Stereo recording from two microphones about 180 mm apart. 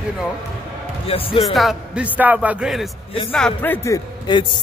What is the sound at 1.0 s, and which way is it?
Speech, 30° left (ahead or behind).